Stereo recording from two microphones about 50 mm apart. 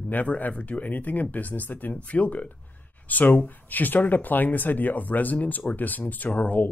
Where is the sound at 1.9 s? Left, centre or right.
Left.